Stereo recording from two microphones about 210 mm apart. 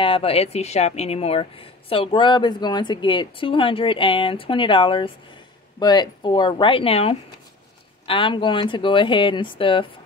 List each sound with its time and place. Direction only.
0.0 s speech: 25° left (ahead or behind)